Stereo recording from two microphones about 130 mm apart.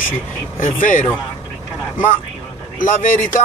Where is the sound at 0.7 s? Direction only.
80° left.